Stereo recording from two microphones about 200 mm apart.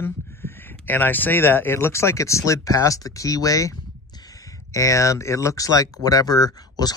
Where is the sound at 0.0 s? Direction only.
10° left (ahead or behind).